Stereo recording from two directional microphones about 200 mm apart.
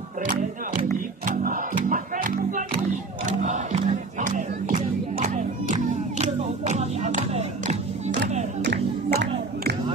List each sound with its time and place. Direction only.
0.9 s music: 40° right (ahead or behind)
3.3 s battle cry: 35° right (ahead or behind)
8.6 s music: 55° right (ahead or behind)